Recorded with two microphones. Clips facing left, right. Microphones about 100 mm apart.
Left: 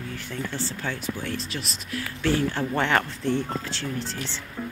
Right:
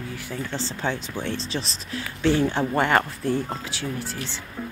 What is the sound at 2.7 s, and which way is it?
Speech, 10° right (ahead or behind).